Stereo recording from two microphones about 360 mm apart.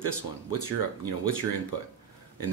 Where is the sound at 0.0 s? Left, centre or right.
Left.